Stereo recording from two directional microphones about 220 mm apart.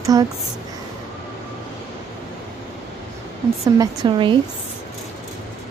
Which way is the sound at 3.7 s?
20° right (ahead or behind).